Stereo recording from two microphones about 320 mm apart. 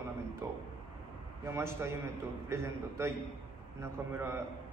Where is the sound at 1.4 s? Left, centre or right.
Centre.